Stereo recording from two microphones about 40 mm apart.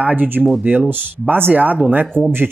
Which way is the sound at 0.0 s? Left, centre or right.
Right.